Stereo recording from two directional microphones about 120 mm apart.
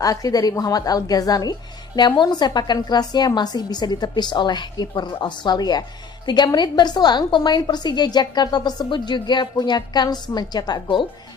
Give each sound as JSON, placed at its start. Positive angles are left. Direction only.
{"t": 0.0, "sound": "a woman's voice", "side_deg": 30}